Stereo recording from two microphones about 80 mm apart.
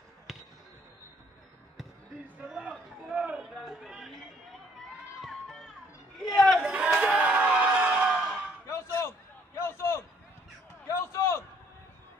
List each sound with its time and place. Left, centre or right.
0.3 s basketball bounce: centre
2.4 s speech: centre
5.2 s music: centre
6.3 s chatter: centre
6.6 s a sound: centre
8.6 s a sound: left